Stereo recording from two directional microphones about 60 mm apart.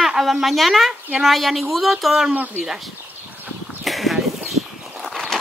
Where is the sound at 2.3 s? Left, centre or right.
Right.